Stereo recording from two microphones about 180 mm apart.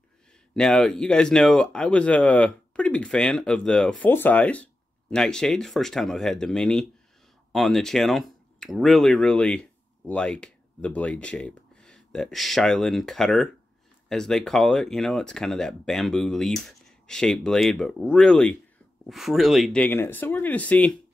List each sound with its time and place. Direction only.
0.6 s speech: 5° left (ahead or behind)